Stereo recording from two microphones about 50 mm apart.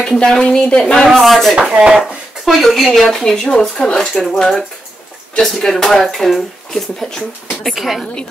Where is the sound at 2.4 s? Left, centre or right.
Centre.